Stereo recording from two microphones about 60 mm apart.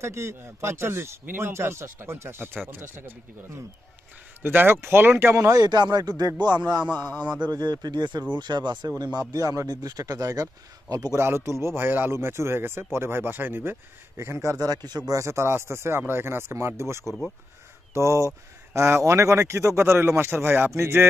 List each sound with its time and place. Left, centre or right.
0.0 s speech: right
1.2 s a man's voice: right
1.5 s a man's voice: right
5.3 s speech: right
5.6 s speech: right
7.5 s speech: right
9.3 s speech: right
11.1 s speech: right
14.6 s speech: right
15.2 s speech: right
17.0 s speech: centre
17.9 s speech: right
19.8 s a man's voice: right